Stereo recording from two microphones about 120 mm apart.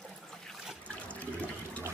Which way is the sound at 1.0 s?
10° left (ahead or behind).